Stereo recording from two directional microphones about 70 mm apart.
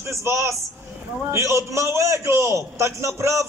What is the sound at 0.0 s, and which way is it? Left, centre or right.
A man's voice, right.